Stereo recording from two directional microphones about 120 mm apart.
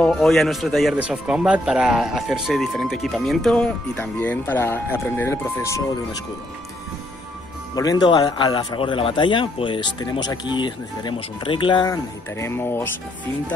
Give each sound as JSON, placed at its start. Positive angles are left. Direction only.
{"t": 0.0, "sound": "speech", "side_deg": 5}
{"t": 7.7, "sound": "speech", "side_deg": 30}
{"t": 8.5, "sound": "speech", "side_deg": 45}